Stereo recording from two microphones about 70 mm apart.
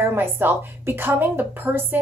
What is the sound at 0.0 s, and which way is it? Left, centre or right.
A woman's voice, right.